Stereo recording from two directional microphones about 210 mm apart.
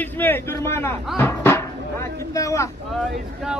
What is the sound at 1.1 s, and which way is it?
Music, 10° left (ahead or behind).